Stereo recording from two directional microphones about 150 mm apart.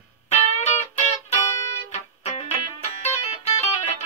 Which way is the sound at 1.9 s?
45° left (ahead or behind).